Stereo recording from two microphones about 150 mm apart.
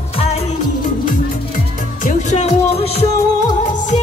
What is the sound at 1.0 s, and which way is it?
Music, 65° left (ahead or behind).